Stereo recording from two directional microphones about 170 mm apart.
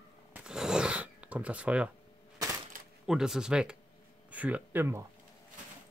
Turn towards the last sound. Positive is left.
turn(degrees=-15)  # may be behind; listen again after turning